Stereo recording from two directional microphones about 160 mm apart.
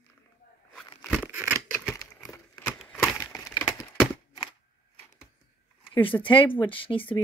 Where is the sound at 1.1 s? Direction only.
10° right (ahead or behind).